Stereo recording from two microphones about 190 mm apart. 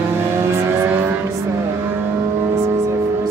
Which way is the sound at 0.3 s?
15° right (ahead or behind).